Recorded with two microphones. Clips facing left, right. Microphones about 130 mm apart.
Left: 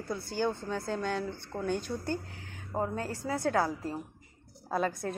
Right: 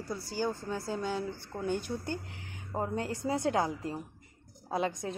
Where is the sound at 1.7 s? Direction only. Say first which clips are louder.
Left 1 dB; 15° right (ahead or behind).